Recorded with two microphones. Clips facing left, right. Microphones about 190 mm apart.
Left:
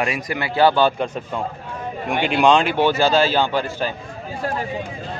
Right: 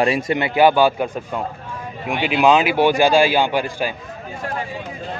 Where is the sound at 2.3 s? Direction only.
5° right (ahead or behind).